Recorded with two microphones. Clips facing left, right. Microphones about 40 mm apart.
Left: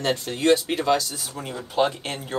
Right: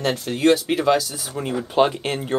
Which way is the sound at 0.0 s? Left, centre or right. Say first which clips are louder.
Right 3 dB; centre.